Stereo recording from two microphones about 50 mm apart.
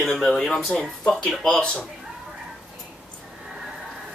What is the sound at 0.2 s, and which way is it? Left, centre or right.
Speech, centre.